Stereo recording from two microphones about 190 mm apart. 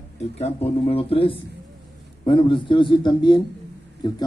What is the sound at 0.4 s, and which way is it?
A man's voice, 30° left (ahead or behind).